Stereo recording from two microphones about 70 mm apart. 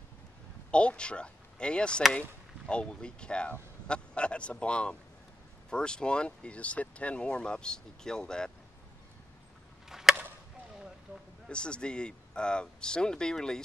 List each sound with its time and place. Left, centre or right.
0.7 s speech: centre
9.8 s chop: centre
11.4 s speech: centre